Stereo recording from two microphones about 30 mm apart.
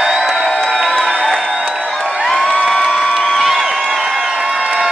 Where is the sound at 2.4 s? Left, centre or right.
Left.